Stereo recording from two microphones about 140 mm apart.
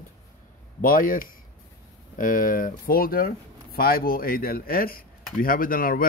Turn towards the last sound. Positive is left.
turn(degrees=90)